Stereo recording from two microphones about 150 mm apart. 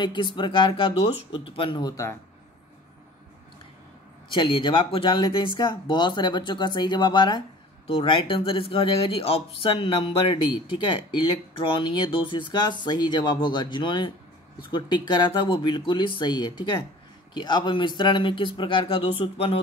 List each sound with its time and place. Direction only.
0.0 s speech: 30° left (ahead or behind)
4.3 s speech: 35° left (ahead or behind)